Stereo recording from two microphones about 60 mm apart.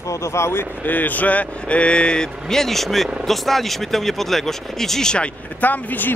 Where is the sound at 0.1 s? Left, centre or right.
Left.